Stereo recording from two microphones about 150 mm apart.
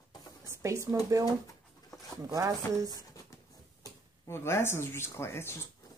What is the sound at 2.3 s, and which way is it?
Speech, 20° right (ahead or behind).